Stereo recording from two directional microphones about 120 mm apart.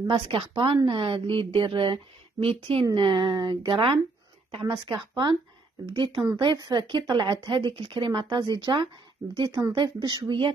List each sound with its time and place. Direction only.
0.3 s speech: 45° right (ahead or behind)